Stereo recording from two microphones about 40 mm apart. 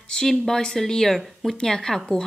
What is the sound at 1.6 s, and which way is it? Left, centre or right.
Speech, centre.